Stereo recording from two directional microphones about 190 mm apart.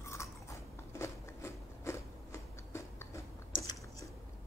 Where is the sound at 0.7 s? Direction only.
15° left (ahead or behind).